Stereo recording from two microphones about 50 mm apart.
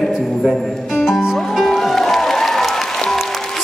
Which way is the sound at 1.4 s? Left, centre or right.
Centre.